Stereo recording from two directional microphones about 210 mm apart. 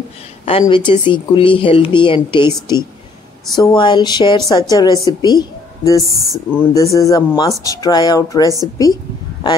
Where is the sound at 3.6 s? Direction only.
20° left (ahead or behind).